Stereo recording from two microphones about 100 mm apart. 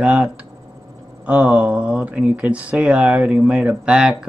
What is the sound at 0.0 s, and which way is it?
Speech, 15° right (ahead or behind).